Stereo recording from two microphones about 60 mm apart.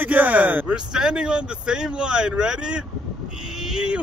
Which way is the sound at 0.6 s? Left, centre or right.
Centre.